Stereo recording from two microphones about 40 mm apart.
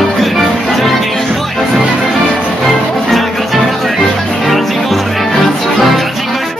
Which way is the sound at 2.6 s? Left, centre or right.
Centre.